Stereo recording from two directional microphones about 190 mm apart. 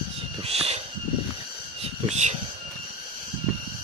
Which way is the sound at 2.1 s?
35° right (ahead or behind).